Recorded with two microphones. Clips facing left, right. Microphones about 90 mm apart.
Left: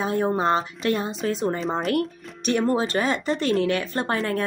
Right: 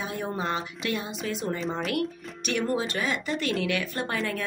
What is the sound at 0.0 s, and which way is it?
Speech, 35° left (ahead or behind).